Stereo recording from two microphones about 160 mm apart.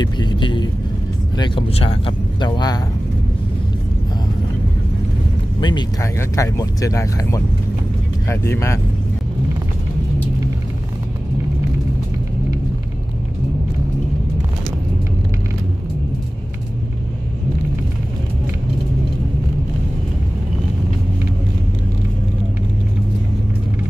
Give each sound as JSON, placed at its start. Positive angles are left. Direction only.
{"t": 0.0, "sound": "speech", "side_deg": 25}
{"t": 5.6, "sound": "speech", "side_deg": 30}